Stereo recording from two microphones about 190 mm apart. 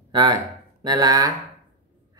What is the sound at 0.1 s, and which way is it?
A woman's voice, 25° right (ahead or behind).